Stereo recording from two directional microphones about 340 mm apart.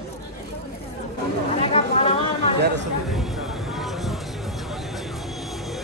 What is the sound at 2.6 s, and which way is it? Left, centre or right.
Speech, right.